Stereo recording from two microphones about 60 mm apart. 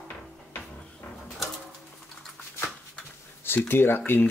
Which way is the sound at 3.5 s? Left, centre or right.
Left.